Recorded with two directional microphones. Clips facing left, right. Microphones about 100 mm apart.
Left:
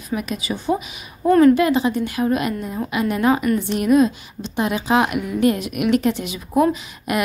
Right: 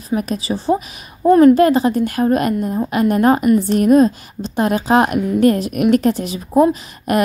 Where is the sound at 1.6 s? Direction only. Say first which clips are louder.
Right 5 dB; 40° right (ahead or behind).